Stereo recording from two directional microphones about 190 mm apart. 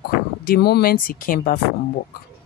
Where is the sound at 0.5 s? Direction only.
55° left (ahead or behind).